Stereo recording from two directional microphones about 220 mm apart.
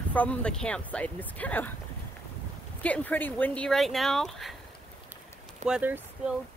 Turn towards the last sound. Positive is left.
turn(degrees=-5)  # may be behind; listen again after turning